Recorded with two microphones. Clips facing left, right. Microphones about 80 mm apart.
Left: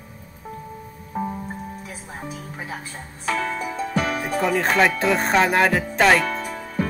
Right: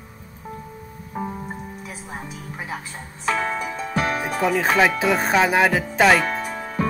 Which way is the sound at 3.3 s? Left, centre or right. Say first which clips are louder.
Right 1 dB; right.